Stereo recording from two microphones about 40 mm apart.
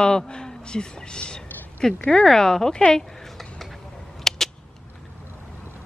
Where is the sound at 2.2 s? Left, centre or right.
Centre.